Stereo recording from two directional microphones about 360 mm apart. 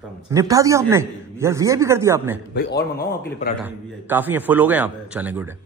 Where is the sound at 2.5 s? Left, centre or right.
Left.